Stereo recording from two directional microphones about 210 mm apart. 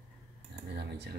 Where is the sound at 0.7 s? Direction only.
55° right (ahead or behind).